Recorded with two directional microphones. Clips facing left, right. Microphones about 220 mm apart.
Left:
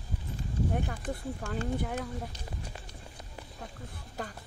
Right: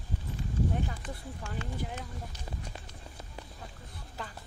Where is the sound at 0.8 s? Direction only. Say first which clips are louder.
Left 5 dB; 55° left (ahead or behind).